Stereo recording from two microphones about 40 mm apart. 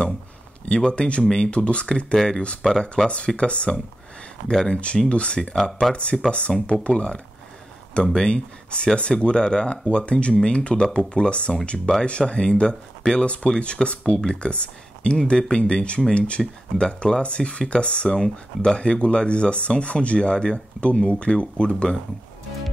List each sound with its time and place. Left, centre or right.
0.7 s speech: left
1.2 s speech: centre
1.5 s speech: left
3.3 s speech: left
4.5 s speech: centre
4.7 s speech: left
5.4 s speech: centre
5.9 s speech: left
16.8 s speech: centre